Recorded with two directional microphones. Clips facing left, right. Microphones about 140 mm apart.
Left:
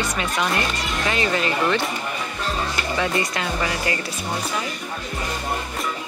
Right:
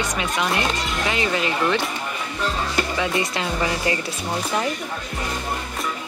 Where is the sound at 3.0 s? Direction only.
20° right (ahead or behind).